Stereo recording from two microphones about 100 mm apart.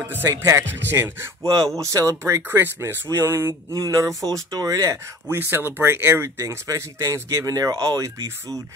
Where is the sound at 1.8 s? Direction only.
30° right (ahead or behind).